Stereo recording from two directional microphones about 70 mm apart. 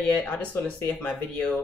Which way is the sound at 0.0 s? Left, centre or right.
Centre.